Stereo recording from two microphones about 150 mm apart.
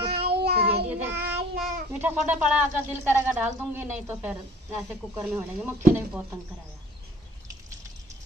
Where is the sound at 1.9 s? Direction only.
10° right (ahead or behind).